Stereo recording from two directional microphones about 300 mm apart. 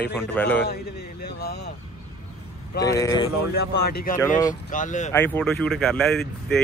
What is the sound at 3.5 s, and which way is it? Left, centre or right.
Speech, left.